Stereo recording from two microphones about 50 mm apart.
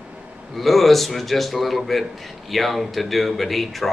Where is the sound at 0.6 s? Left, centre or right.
Centre.